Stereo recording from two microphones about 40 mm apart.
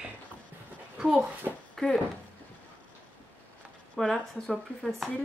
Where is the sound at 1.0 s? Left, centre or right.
Right.